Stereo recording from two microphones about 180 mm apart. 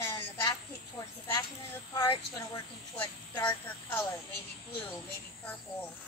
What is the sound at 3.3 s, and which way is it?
Speech, 20° left (ahead or behind).